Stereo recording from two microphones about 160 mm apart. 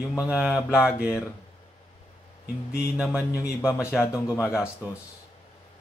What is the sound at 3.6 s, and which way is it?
Speech, 15° left (ahead or behind).